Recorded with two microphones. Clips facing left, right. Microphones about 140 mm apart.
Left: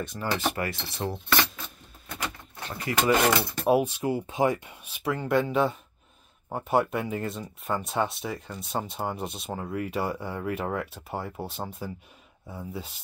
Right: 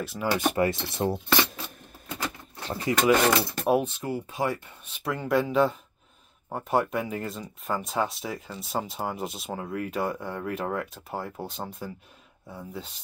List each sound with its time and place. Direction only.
0.0 s mechanisms: 5° right (ahead or behind)
0.6 s mechanisms: 25° right (ahead or behind)
2.7 s mechanisms: 25° right (ahead or behind)
3.0 s speech: 5° left (ahead or behind)
4.0 s speech: 20° left (ahead or behind); by 12.9 s 5° left (ahead or behind)